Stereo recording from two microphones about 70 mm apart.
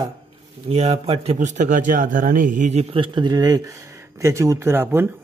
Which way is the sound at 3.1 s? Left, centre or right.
Right.